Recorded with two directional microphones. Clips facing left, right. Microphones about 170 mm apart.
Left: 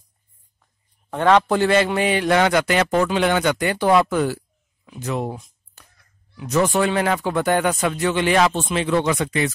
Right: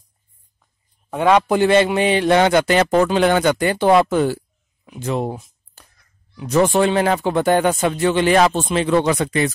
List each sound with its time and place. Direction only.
1.1 s a man's voice: 10° right (ahead or behind); by 9.5 s 35° right (ahead or behind)